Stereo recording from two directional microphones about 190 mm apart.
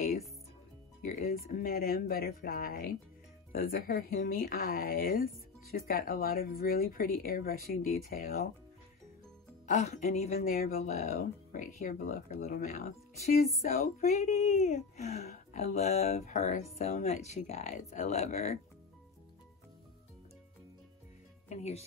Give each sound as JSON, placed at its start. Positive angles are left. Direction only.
{"t": 1.0, "sound": "speech", "side_deg": 45}
{"t": 9.7, "sound": "speech", "side_deg": 35}
{"t": 12.6, "sound": "speech", "side_deg": 35}
{"t": 21.5, "sound": "speech", "side_deg": 35}